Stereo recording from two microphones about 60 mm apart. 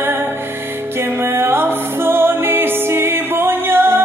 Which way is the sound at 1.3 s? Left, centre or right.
Right.